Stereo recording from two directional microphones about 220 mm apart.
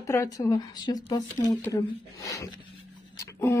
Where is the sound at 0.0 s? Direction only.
15° left (ahead or behind).